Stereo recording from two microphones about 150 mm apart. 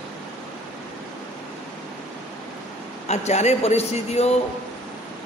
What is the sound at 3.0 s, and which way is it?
A man's voice, 50° left (ahead or behind).